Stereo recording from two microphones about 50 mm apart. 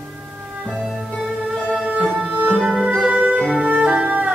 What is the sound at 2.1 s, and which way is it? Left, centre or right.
Music, right.